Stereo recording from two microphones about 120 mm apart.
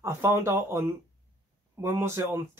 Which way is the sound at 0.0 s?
20° right (ahead or behind).